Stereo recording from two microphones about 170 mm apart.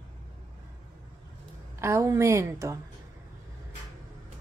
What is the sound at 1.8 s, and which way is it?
Speech, 15° right (ahead or behind).